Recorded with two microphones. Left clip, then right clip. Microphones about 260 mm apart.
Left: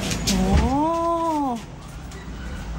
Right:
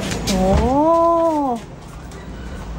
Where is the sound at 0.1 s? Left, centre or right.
Centre.